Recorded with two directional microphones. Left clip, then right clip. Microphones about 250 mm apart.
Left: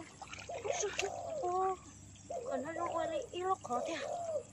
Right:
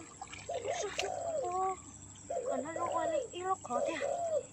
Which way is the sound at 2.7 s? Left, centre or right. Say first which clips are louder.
Right 3 dB; centre.